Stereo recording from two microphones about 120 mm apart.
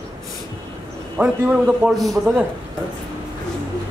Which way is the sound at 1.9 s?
Centre (ahead or behind).